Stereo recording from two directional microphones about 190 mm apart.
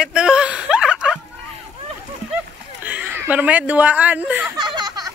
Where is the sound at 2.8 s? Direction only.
10° right (ahead or behind).